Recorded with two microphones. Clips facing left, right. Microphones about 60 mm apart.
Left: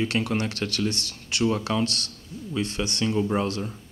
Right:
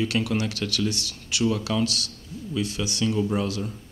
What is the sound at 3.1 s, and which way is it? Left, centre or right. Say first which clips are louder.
Speech: left 1 dB; left.